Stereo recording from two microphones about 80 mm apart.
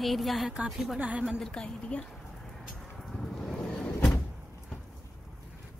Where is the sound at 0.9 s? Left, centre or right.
Centre.